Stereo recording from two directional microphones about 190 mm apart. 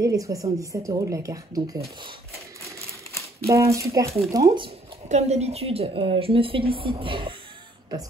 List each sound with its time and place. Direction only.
0.0 s speech: 15° right (ahead or behind)
2.0 s a sound: 25° right (ahead or behind)
3.4 s speech: 15° right (ahead or behind)
4.6 s a woman's voice: 35° right (ahead or behind)